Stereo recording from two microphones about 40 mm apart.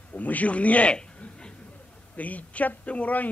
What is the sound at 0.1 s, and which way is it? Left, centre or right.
Speech, left.